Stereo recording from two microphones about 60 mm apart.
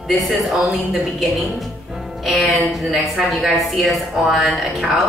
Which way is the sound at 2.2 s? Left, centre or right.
Centre.